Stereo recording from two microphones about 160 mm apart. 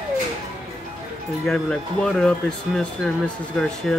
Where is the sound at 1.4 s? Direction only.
5° left (ahead or behind).